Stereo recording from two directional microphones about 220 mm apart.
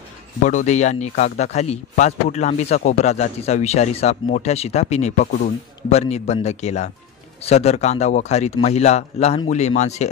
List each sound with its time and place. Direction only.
0.4 s speech: 35° left (ahead or behind)